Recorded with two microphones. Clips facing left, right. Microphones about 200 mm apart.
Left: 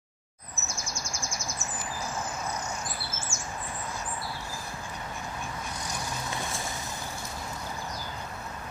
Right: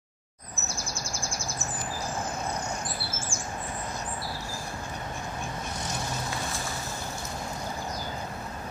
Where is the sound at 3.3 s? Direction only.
30° right (ahead or behind).